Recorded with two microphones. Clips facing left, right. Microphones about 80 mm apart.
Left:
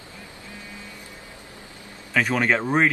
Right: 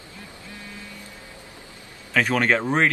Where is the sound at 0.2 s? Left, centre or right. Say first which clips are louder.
Right 2 dB; left.